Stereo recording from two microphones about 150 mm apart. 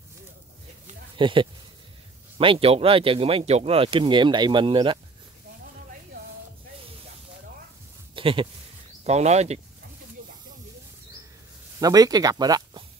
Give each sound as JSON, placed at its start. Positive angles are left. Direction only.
{"t": 1.1, "sound": "speech", "side_deg": -35}
{"t": 8.1, "sound": "speech", "side_deg": -35}
{"t": 9.0, "sound": "speech", "side_deg": -45}
{"t": 11.8, "sound": "speech", "side_deg": -25}